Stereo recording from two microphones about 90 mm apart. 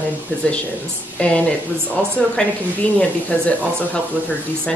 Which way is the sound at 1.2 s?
15° left (ahead or behind).